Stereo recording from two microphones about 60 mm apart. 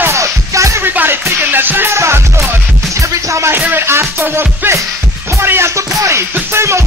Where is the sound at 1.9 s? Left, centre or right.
Right.